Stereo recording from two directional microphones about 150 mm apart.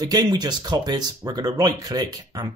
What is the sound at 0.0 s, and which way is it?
Speech, 25° right (ahead or behind).